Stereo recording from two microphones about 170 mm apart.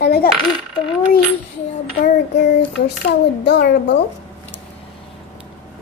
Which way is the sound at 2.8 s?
75° left (ahead or behind).